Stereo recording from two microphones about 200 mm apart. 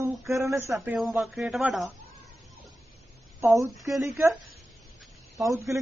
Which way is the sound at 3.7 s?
Centre (ahead or behind).